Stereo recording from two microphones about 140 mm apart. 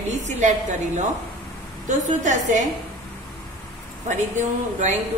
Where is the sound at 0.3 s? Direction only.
60° right (ahead or behind).